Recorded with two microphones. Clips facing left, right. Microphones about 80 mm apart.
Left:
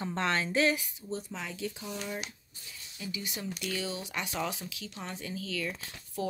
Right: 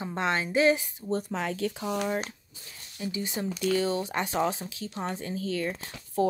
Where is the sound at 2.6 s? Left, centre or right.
Right.